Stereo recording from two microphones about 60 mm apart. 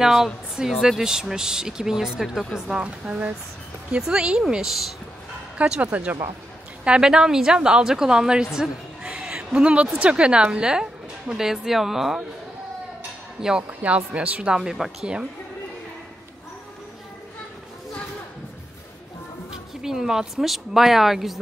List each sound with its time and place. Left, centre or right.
0.0 s speech: centre
5.6 s speech: right
6.8 s a woman's voice: centre
13.4 s speech: centre
13.7 s speech: right
14.5 s speech: centre
19.5 s speech: centre